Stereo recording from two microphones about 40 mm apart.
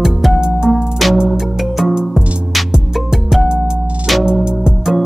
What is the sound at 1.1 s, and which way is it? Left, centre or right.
Music, centre.